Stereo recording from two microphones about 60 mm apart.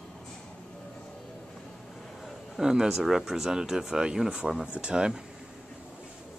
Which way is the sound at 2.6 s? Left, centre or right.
Centre.